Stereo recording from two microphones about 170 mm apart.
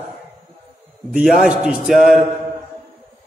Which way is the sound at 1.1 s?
Centre (ahead or behind).